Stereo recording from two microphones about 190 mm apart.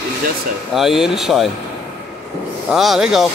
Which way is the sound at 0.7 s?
Centre (ahead or behind).